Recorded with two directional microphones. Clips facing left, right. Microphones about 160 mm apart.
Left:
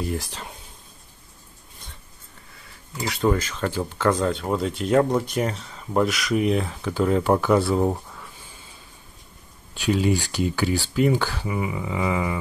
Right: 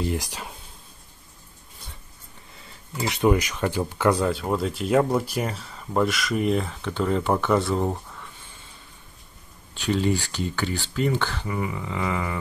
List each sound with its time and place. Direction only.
0.0 s speech: 20° right (ahead or behind)
3.0 s speech: 20° right (ahead or behind); by 8.3 s 5° left (ahead or behind)
9.8 s speech: 10° left (ahead or behind)